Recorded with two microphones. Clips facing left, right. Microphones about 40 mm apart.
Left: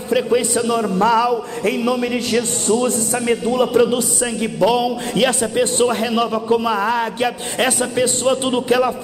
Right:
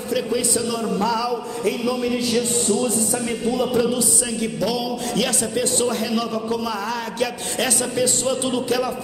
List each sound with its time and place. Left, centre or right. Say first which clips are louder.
0.1 s a man's voice: left 6 dB; left